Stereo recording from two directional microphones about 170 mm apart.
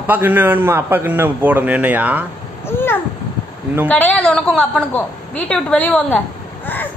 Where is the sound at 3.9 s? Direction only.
10° left (ahead or behind).